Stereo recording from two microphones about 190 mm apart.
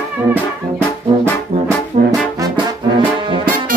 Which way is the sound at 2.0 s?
40° right (ahead or behind).